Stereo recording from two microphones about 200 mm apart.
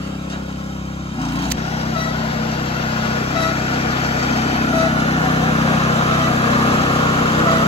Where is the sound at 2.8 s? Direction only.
30° left (ahead or behind).